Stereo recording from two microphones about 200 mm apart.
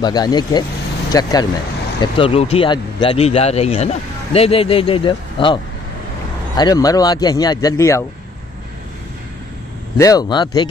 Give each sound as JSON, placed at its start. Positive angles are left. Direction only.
{"t": 0.0, "sound": "speech", "side_deg": 20}
{"t": 9.9, "sound": "speech", "side_deg": 20}